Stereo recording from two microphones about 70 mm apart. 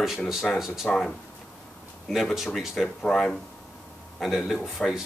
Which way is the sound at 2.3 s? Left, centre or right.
Centre.